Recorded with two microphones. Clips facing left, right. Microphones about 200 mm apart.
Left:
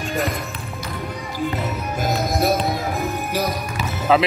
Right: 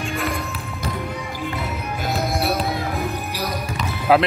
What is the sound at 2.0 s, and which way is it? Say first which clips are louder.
Music: left 2 dB; 40° left (ahead or behind).